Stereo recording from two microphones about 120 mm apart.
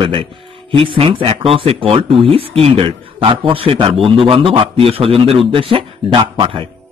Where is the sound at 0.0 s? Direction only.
45° right (ahead or behind).